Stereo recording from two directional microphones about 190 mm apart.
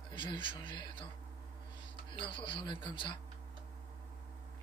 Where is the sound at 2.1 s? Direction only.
25° left (ahead or behind).